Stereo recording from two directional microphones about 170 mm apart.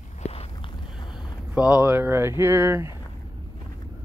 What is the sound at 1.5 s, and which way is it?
Speech, 5° right (ahead or behind).